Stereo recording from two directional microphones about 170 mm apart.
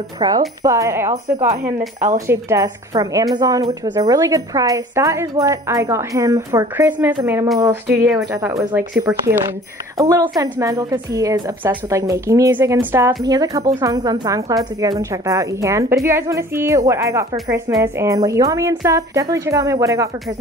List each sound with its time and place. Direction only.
0.2 s speech: 20° right (ahead or behind)
1.8 s speech: 45° right (ahead or behind)
2.1 s speech: 20° right (ahead or behind)
9.9 s speech: 20° right (ahead or behind)